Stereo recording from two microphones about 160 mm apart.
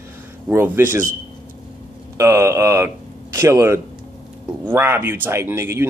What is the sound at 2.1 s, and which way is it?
Speech, 20° right (ahead or behind).